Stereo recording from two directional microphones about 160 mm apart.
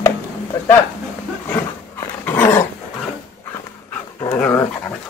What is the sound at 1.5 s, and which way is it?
Dog, 15° left (ahead or behind).